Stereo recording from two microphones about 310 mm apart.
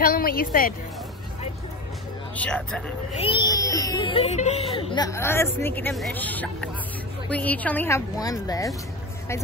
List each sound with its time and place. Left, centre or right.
0.0 s a woman's voice: left
2.3 s speech: centre
3.2 s a sound: centre
4.7 s speech: centre